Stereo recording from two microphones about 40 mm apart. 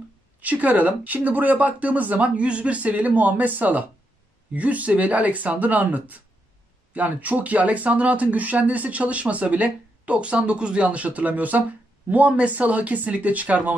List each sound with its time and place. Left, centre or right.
0.4 s speech: right